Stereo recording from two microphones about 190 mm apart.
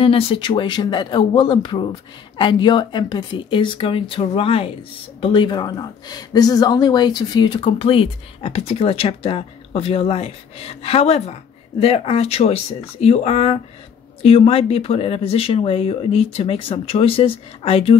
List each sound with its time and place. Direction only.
0.0 s speech: 30° left (ahead or behind)